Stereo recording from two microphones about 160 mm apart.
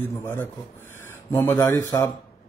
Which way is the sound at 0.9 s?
15° left (ahead or behind).